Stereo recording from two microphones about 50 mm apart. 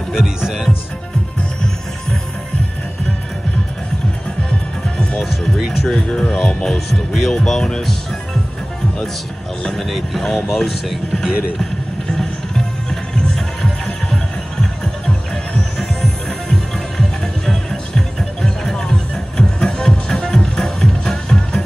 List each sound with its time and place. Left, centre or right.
0.1 s speech: centre
4.8 s music: centre
5.9 s speech: centre
6.3 s speech: centre
9.6 s speech: centre
12.1 s music: centre